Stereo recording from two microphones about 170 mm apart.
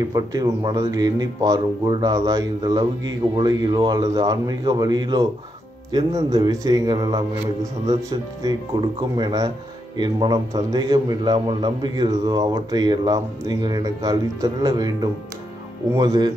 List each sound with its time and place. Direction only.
0.1 s a man's voice: 20° right (ahead or behind)